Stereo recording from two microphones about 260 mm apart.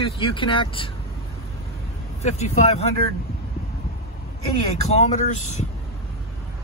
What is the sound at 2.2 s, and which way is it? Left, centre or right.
Speech, left.